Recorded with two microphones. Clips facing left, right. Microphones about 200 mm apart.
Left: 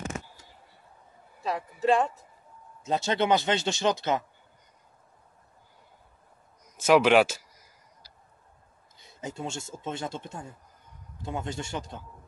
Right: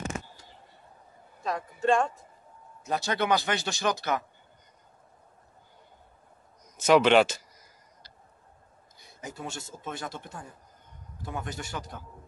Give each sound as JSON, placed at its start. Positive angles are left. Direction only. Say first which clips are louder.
{"t": 1.5, "sound": "speech", "louder": "left 1 dB", "side_deg": 5}
{"t": 2.8, "sound": "speech", "louder": "left 2 dB", "side_deg": 25}
{"t": 6.9, "sound": "speech", "louder": "even", "side_deg": 5}
{"t": 8.9, "sound": "speech", "louder": "left 4 dB", "side_deg": 25}